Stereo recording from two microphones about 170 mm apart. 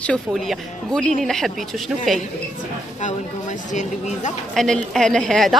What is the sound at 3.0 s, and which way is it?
Speech, 45° left (ahead or behind).